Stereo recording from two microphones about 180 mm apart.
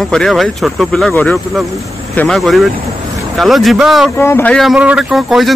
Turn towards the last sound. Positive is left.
turn(degrees=0)  # may be behind; listen again after turning